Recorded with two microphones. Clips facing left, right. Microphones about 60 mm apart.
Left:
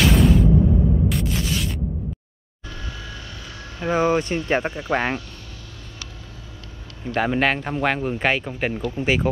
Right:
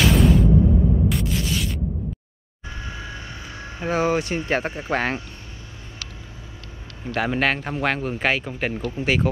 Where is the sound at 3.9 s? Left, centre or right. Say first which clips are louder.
Left 2 dB; centre.